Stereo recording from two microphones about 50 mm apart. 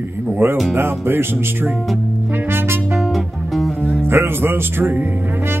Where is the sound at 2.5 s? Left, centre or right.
Right.